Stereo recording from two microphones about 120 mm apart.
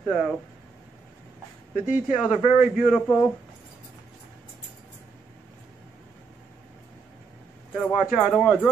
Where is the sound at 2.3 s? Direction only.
80° left.